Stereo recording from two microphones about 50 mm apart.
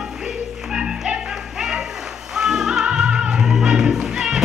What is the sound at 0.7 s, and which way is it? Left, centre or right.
Music, centre.